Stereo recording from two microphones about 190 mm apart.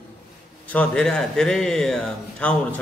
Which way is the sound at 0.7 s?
5° left (ahead or behind).